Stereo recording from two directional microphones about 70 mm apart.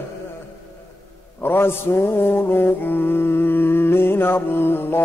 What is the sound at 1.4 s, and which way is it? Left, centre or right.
Mantra, left.